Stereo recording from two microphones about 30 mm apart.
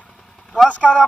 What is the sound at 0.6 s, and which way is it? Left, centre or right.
Speech, left.